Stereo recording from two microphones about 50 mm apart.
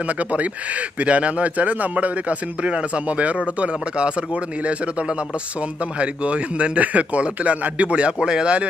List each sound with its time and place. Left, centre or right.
0.0 s speech: right